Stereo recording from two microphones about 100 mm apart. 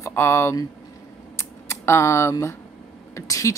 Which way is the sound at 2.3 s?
25° left (ahead or behind).